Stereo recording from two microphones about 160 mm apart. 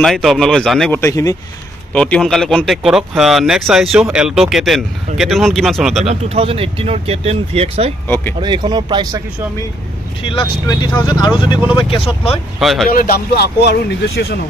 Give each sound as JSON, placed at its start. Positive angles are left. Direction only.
{"t": 0.0, "sound": "speech", "side_deg": 0}
{"t": 0.9, "sound": "speech", "side_deg": 20}
{"t": 2.0, "sound": "speech", "side_deg": 5}
{"t": 6.0, "sound": "speech", "side_deg": -40}
{"t": 8.1, "sound": "speech", "side_deg": 15}
{"t": 8.4, "sound": "speech", "side_deg": -30}
{"t": 10.2, "sound": "speech", "side_deg": 35}
{"t": 12.5, "sound": "speech", "side_deg": 0}
{"t": 12.9, "sound": "speech", "side_deg": 70}